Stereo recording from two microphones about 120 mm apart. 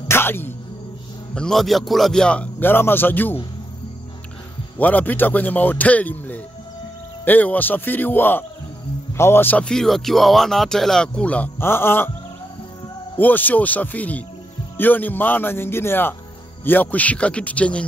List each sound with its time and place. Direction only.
0.1 s music: 20° left (ahead or behind)
1.3 s speech: 5° left (ahead or behind)
4.7 s speech: 15° left (ahead or behind)
13.1 s speech: 15° left (ahead or behind)